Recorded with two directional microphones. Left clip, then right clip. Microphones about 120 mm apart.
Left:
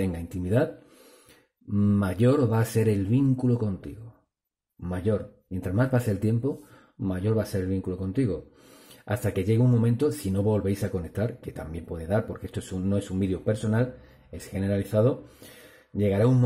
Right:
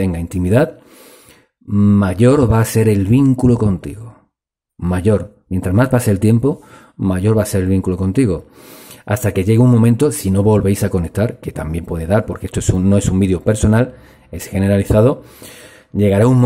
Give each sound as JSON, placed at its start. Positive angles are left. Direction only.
{"t": 0.3, "sound": "speech", "side_deg": -35}
{"t": 1.7, "sound": "speech", "side_deg": -30}
{"t": 9.0, "sound": "speech", "side_deg": -35}